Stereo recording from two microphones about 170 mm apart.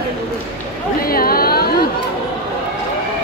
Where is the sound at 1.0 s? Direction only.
60° left (ahead or behind).